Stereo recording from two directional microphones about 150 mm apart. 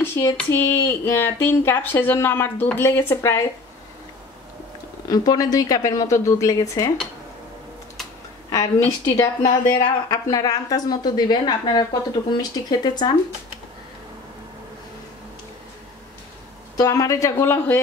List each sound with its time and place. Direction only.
0.0 s speech: 15° left (ahead or behind)
5.1 s a woman's voice: 25° left (ahead or behind)
8.5 s a woman's voice: 20° left (ahead or behind)
16.7 s a woman's voice: 25° left (ahead or behind)